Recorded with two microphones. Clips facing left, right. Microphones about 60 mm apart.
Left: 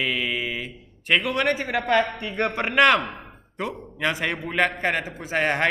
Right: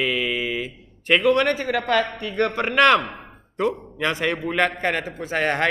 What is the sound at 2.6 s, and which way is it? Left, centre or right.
A man's voice, centre.